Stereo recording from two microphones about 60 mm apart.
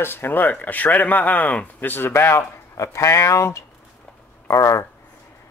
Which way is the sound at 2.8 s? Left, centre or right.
Left.